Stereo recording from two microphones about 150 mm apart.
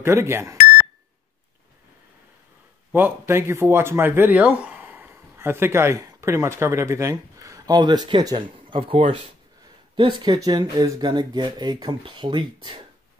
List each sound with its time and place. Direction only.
0.0 s speech: 15° right (ahead or behind)
2.9 s speech: 15° right (ahead or behind); by 12.8 s 30° right (ahead or behind)